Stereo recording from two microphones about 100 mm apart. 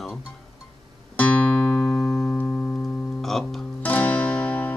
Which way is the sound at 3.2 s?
Centre (ahead or behind).